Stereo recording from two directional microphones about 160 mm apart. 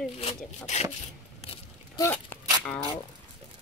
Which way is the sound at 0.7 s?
50° left (ahead or behind).